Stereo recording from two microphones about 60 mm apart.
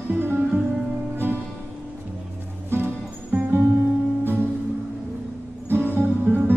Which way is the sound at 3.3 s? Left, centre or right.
Right.